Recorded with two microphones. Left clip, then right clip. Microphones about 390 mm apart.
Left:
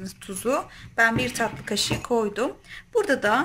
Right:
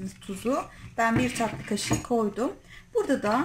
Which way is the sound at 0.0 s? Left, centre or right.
Left.